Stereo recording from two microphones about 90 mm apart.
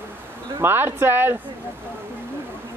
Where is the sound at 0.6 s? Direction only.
25° right (ahead or behind).